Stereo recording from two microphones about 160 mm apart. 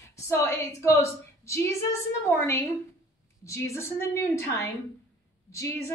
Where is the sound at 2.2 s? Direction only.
15° left (ahead or behind).